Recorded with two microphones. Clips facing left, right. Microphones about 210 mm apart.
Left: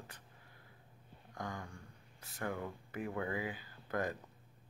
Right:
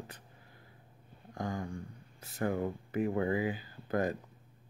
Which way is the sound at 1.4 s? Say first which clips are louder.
Right 7 dB; 30° right (ahead or behind).